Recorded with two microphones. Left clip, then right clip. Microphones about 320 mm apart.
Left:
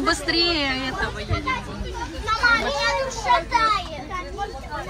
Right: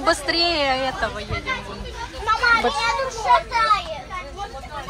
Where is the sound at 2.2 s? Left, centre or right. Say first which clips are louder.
Right 2 dB; centre.